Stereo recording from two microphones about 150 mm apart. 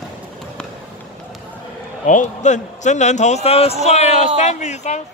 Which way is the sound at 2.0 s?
55° left (ahead or behind).